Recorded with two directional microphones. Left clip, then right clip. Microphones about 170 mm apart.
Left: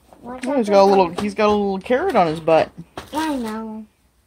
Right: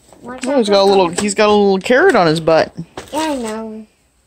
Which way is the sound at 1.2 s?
35° right (ahead or behind).